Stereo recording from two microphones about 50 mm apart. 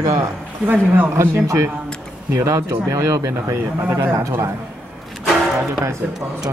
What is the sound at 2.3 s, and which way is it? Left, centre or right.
Speech, right.